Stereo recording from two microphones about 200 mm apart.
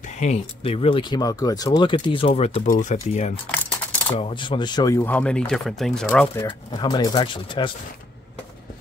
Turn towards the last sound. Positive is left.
turn(degrees=25)  # may be behind; listen again after turning